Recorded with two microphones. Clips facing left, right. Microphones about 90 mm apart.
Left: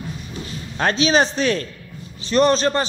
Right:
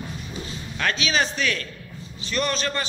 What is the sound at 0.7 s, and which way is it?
A man's voice, 30° left (ahead or behind).